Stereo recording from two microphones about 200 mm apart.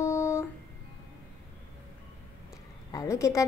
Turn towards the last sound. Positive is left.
turn(degrees=15)  # may be behind; listen again after turning